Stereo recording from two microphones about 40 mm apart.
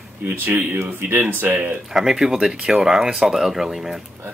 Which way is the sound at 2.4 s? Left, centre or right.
Right.